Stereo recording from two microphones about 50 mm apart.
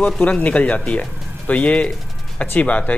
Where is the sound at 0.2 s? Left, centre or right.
Left.